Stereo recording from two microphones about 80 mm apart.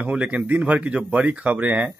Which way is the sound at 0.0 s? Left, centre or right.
Centre.